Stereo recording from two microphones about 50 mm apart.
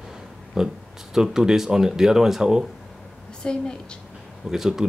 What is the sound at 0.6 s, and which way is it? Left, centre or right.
Speech, centre.